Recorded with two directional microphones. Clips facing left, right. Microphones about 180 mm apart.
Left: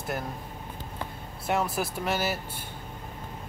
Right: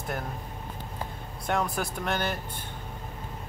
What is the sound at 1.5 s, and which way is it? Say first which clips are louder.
Speech: left 1 dB; 5° left (ahead or behind).